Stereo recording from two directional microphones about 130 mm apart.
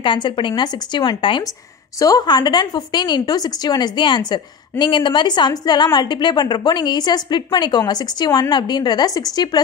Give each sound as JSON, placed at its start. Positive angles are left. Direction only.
{"t": 0.0, "sound": "a woman's voice", "side_deg": 40}